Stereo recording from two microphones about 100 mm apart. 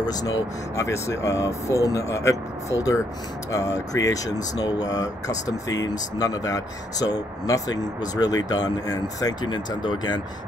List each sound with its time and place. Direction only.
0.0 s speech: 40° left (ahead or behind)